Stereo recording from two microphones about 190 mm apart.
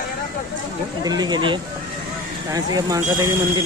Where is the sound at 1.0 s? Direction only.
20° right (ahead or behind).